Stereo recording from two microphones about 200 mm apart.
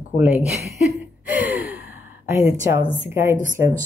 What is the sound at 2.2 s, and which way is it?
A woman's voice, 15° right (ahead or behind).